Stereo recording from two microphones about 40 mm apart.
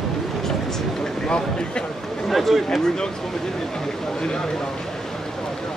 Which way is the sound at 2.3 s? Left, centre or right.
Centre.